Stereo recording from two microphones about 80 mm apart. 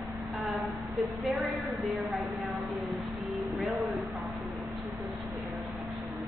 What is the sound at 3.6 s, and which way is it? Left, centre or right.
Speech, centre.